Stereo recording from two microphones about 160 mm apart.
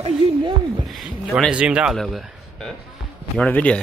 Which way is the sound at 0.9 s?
5° right (ahead or behind).